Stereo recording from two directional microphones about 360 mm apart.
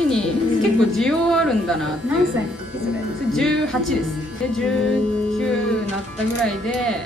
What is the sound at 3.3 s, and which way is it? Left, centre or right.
Speech, centre.